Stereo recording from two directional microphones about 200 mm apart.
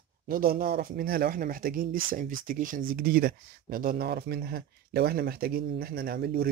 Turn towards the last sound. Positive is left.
turn(degrees=-50)  # may be behind; listen again after turning